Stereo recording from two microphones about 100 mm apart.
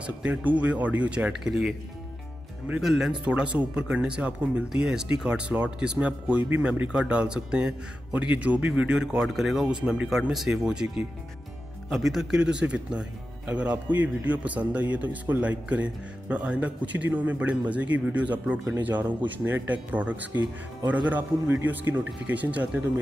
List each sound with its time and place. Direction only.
0.0 s a man's voice: 10° right (ahead or behind)
2.8 s a man's voice: 5° right (ahead or behind)